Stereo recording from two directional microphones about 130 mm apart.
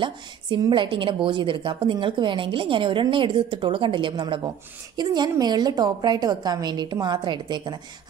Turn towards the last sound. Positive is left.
turn(degrees=-35)  # may be behind; listen again after turning